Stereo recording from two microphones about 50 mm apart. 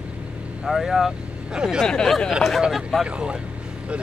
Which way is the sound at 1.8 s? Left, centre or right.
Centre.